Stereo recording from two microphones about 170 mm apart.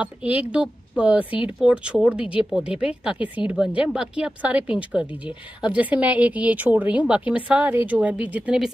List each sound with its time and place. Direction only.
0.0 s speech: 10° right (ahead or behind)